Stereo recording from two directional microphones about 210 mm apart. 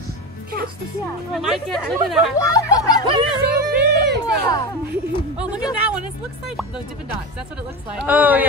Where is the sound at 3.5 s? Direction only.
50° right (ahead or behind).